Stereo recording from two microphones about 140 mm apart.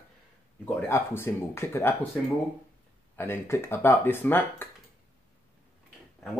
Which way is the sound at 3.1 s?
15° left (ahead or behind).